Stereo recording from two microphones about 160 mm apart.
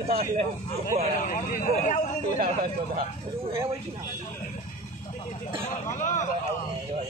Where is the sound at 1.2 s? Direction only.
55° left (ahead or behind).